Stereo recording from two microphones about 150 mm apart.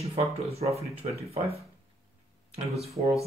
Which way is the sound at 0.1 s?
40° right (ahead or behind).